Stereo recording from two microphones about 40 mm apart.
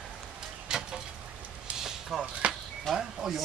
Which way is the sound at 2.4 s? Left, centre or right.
Right.